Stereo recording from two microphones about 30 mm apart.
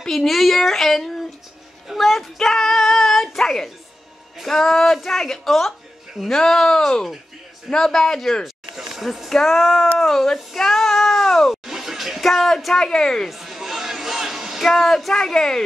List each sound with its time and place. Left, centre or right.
0.0 s speech: centre
8.7 s a sound: centre
9.0 s speech: centre
9.3 s speech: centre
11.5 s a sound: centre
12.2 s speech: centre
12.8 s speech: left
13.3 s a sound: centre
14.6 s speech: centre
15.2 s speech: centre